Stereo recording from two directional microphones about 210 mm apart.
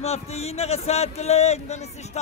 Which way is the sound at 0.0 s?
30° left (ahead or behind).